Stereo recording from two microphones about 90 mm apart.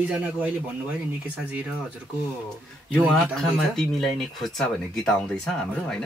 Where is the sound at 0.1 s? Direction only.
20° right (ahead or behind).